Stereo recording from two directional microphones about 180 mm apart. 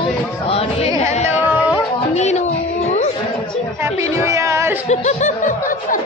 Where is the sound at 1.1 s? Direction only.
35° left (ahead or behind).